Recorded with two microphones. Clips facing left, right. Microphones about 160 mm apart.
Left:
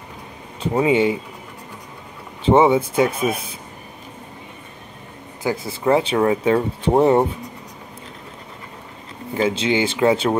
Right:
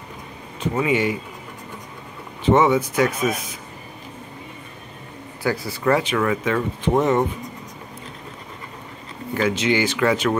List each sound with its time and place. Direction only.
0.7 s speech: 25° left (ahead or behind)
2.4 s speech: 30° left (ahead or behind)
5.4 s speech: 20° left (ahead or behind)
9.3 s speech: 25° left (ahead or behind)